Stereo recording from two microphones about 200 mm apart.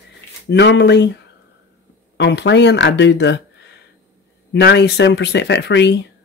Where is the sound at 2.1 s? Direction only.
60° left (ahead or behind).